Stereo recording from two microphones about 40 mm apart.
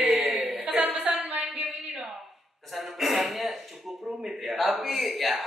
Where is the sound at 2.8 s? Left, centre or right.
Centre.